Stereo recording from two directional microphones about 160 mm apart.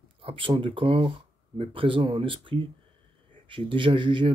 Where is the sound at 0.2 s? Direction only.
35° right (ahead or behind).